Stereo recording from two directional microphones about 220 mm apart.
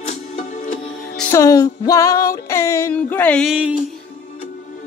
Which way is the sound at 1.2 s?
10° left (ahead or behind).